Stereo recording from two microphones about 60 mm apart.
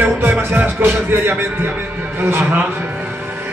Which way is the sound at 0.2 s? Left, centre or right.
Right.